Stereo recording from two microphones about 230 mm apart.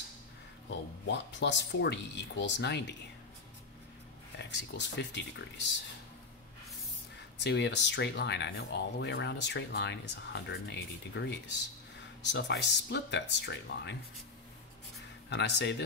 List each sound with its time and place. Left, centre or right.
0.7 s speech: left
4.4 s speech: left
7.3 s speech: left
15.2 s speech: left